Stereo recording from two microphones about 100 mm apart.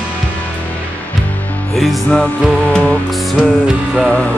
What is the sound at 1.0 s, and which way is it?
Music, 15° left (ahead or behind).